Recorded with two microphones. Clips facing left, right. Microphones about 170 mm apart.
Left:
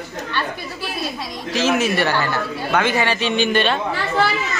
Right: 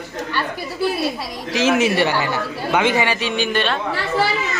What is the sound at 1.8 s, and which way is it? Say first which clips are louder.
Speech: right 2 dB; 15° right (ahead or behind).